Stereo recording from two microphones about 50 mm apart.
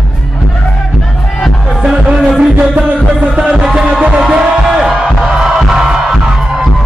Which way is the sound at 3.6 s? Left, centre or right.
Centre.